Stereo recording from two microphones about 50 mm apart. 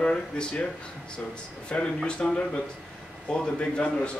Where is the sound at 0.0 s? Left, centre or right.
Left.